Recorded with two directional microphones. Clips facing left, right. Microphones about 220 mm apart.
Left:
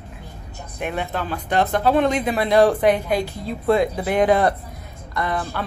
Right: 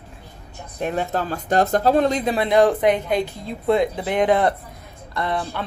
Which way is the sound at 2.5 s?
20° right (ahead or behind).